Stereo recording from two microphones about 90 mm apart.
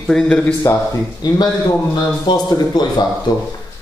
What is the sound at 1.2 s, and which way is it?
A man's voice, 50° left (ahead or behind).